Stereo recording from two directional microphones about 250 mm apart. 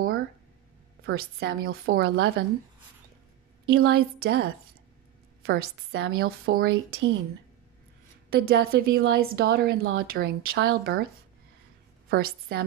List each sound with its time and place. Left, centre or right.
1.0 s a woman's voice: right
3.7 s a woman's voice: right
8.3 s a woman's voice: right
12.1 s a woman's voice: right